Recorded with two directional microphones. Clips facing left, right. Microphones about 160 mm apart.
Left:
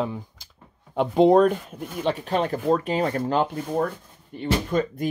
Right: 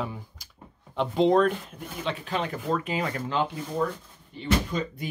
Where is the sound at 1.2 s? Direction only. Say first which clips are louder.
Left 4 dB; 40° left (ahead or behind).